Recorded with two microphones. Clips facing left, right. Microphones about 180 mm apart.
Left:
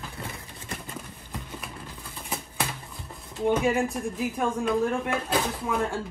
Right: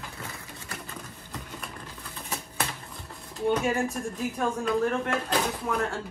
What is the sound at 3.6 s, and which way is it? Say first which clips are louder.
A man's voice: left 2 dB; 15° left (ahead or behind).